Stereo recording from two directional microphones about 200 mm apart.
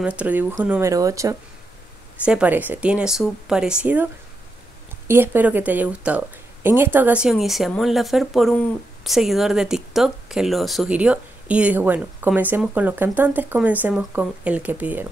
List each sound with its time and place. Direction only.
0.0 s speech: 5° right (ahead or behind)